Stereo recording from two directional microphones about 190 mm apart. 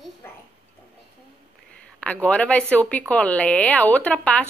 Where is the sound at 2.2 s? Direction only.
5° left (ahead or behind).